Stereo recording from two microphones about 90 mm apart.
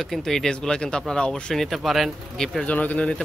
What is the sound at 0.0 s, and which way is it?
Speech, centre (ahead or behind).